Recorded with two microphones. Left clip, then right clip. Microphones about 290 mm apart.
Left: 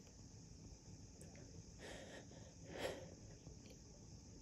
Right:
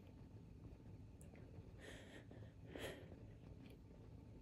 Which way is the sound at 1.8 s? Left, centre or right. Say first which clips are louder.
Left 4 dB; left.